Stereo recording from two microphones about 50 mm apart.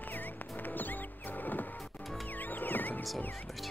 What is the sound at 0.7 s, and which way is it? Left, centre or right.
Music, left.